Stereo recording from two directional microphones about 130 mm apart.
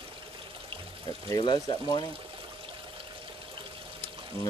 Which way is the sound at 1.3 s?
35° left (ahead or behind).